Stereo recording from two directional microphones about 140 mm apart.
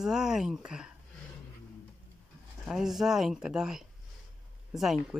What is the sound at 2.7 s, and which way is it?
Speech, 5° right (ahead or behind).